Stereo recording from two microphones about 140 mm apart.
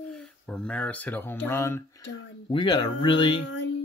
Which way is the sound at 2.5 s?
35° left (ahead or behind).